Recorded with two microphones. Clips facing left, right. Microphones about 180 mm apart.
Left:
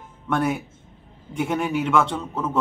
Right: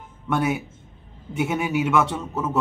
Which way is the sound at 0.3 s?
5° right (ahead or behind).